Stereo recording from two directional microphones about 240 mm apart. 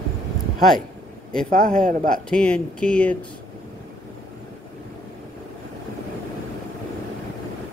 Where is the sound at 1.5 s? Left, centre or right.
Right.